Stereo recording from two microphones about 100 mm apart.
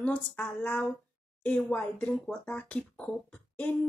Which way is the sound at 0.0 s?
15° left (ahead or behind).